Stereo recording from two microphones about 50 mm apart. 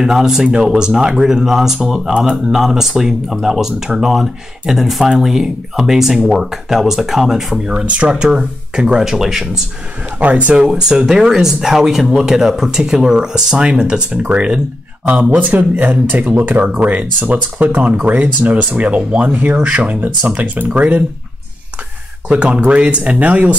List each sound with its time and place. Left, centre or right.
0.0 s speech: centre
7.6 s speech: right; by 9.5 s centre
10.1 s speech: right
10.7 s speech: centre; by 21.0 s right
22.3 s speech: right